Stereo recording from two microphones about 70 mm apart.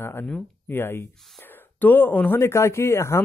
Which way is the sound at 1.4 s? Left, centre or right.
Left.